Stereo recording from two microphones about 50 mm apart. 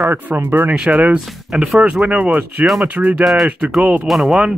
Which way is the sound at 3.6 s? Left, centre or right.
Right.